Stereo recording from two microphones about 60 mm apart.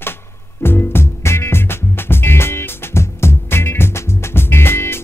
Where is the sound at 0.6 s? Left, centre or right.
Left.